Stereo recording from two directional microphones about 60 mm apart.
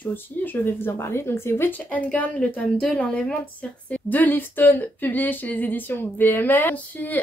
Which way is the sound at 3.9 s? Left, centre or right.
Left.